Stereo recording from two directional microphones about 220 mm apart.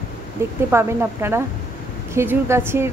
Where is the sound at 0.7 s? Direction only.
10° right (ahead or behind).